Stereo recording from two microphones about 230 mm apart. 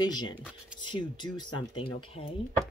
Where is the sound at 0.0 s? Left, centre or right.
Centre.